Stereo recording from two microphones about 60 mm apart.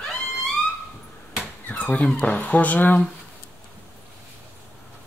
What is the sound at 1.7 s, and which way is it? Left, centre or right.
Speech, left.